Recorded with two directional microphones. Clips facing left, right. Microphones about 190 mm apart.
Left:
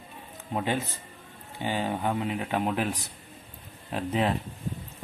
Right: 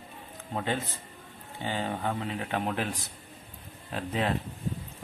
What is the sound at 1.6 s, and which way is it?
Speech, 15° left (ahead or behind).